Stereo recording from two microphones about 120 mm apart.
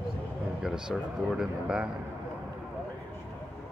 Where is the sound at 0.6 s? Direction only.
5° right (ahead or behind).